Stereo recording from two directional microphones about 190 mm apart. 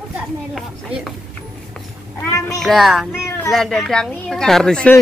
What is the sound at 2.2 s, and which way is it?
Speech, 15° left (ahead or behind).